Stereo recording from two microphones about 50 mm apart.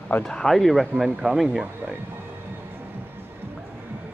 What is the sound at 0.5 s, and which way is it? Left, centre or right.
Speech, centre.